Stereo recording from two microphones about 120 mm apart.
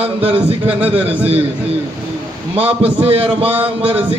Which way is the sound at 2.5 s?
55° right (ahead or behind).